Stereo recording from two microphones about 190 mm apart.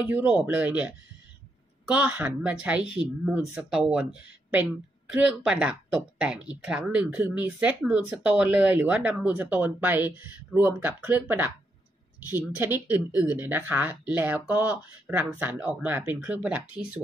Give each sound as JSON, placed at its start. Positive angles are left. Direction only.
{"t": 0.1, "sound": "speech", "side_deg": -10}